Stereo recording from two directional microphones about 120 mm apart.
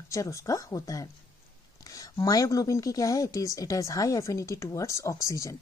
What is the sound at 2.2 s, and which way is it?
A woman's voice, 30° left (ahead or behind).